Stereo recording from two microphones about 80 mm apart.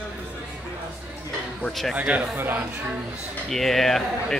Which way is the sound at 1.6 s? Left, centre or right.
Centre.